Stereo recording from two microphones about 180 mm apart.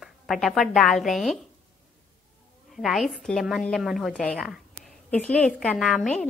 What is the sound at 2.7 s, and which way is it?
A woman's voice, centre (ahead or behind).